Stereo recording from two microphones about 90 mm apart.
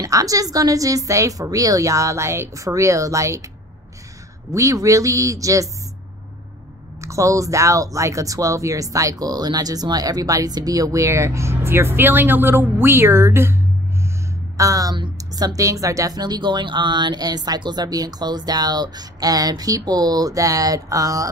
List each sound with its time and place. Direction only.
0.0 s speech: 40° right (ahead or behind)
4.5 s speech: 40° right (ahead or behind)
7.0 s speech: 35° right (ahead or behind)
14.6 s speech: 40° right (ahead or behind)